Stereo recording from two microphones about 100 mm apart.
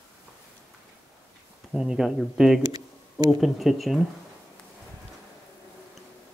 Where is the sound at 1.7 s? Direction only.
5° right (ahead or behind).